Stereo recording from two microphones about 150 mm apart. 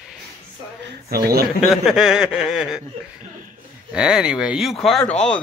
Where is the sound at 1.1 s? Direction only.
90° right.